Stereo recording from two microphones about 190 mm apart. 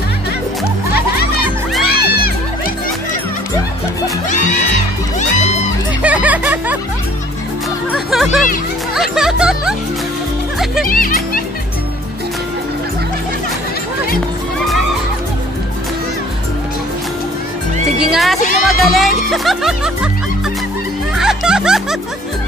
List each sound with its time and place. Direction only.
1.8 s music: 55° left (ahead or behind)
6.0 s music: 10° right (ahead or behind)
7.9 s music: centre (ahead or behind)
10.8 s music: 50° left (ahead or behind)
18.0 s speech: centre (ahead or behind)
21.2 s music: 5° right (ahead or behind)